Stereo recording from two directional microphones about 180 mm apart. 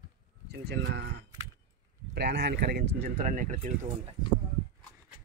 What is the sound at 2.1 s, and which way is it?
Speech, 70° right (ahead or behind).